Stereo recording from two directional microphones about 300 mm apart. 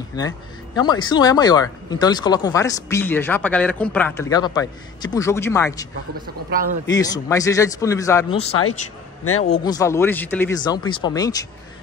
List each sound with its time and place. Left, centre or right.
0.7 s speech: centre
6.2 s speech: right
6.9 s speech: centre